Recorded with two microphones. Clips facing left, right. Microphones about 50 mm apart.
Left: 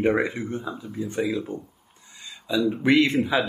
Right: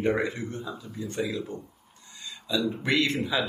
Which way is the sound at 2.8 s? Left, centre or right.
Centre.